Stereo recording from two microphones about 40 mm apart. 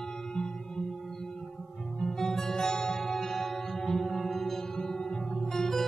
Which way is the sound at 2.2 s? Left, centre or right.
Centre.